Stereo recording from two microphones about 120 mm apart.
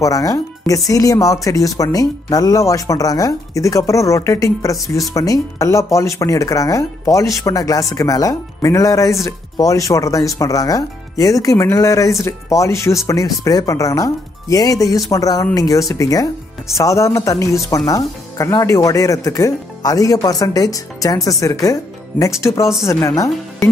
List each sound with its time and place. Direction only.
0.0 s speech: 30° left (ahead or behind)